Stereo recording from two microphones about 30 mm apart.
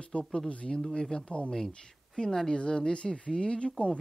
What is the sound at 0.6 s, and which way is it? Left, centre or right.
Speech, centre.